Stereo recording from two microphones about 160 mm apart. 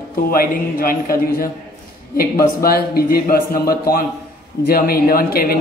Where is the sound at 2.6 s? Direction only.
70° left (ahead or behind).